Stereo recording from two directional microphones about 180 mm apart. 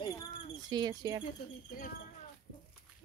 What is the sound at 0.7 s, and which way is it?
Speech, 25° right (ahead or behind).